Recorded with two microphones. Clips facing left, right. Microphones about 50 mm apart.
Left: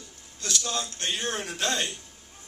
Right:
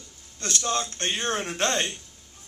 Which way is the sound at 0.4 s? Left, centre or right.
Right.